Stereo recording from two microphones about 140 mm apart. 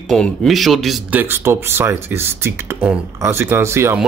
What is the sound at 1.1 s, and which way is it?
Speech, 15° right (ahead or behind).